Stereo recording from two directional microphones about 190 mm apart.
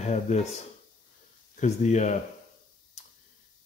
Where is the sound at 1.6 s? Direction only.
40° left (ahead or behind).